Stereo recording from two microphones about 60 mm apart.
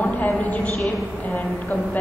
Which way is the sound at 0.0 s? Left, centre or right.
Left.